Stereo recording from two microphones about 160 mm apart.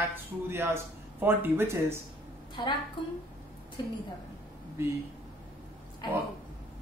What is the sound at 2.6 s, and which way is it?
Speech, 25° left (ahead or behind).